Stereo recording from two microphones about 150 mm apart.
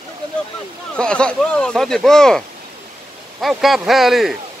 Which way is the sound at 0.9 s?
5° left (ahead or behind).